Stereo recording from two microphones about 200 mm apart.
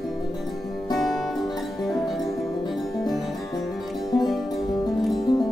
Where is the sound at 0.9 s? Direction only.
Centre (ahead or behind).